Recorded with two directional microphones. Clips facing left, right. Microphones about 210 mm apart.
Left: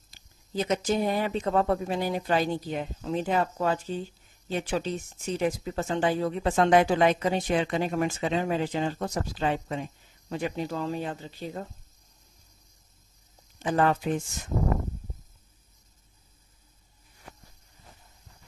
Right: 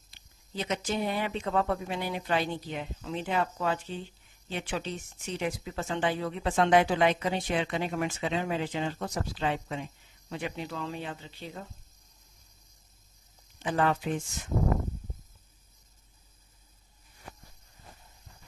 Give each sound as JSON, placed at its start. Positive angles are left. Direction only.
{"t": 0.1, "sound": "speech", "side_deg": 40}
{"t": 13.6, "sound": "speech", "side_deg": 45}